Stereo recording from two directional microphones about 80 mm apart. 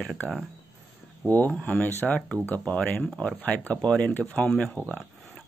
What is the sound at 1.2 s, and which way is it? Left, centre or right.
Speech, left.